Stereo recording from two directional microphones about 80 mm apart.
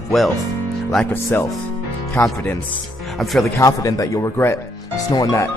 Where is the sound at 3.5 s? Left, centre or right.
Left.